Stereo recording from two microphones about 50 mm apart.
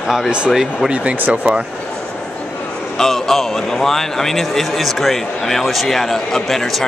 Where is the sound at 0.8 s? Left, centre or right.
Right.